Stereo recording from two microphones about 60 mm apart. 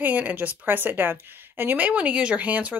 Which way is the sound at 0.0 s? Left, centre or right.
Right.